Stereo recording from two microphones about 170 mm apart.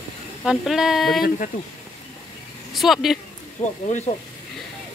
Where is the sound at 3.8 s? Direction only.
40° left (ahead or behind).